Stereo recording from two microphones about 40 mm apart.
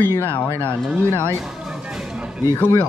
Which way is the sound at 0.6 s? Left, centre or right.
Right.